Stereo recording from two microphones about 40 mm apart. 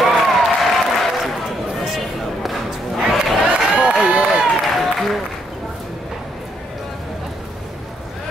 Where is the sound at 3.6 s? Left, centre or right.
Centre.